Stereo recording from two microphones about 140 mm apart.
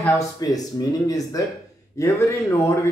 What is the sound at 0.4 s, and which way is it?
A man's voice, 25° left (ahead or behind).